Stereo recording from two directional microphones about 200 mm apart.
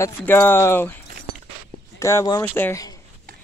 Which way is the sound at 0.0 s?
10° left (ahead or behind).